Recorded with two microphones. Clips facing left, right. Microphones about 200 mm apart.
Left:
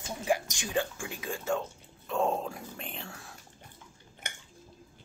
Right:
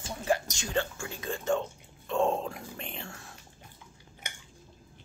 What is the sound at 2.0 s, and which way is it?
Whispering, 5° left (ahead or behind).